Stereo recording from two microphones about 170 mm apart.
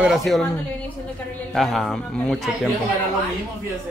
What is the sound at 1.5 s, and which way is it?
Speech, centre (ahead or behind).